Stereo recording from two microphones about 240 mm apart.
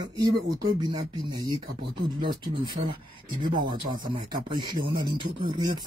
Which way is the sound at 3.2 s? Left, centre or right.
Centre.